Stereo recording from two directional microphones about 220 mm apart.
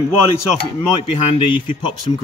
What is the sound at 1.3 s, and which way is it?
Speech, 20° left (ahead or behind).